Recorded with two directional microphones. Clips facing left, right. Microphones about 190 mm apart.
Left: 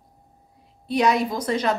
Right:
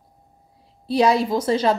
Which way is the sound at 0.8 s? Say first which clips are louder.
Right 3 dB; 30° right (ahead or behind).